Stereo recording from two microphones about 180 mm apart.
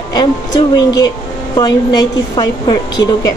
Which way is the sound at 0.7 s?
20° left (ahead or behind).